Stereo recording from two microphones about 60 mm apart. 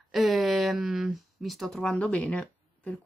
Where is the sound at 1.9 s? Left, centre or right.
Left.